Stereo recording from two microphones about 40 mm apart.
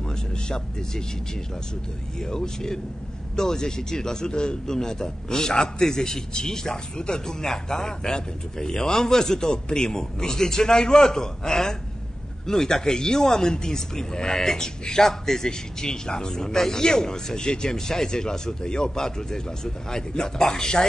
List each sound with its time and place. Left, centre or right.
0.1 s speech: centre
2.1 s a man's voice: centre